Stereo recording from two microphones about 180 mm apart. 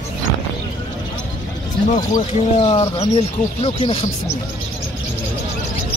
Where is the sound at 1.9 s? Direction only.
35° left (ahead or behind).